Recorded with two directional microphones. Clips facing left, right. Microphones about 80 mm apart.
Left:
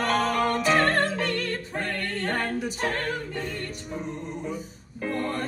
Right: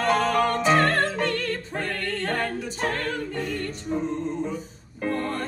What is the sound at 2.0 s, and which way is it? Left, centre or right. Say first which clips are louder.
Music: right 1 dB; left.